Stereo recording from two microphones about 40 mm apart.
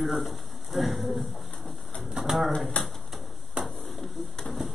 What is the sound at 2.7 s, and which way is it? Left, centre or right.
Speech, left.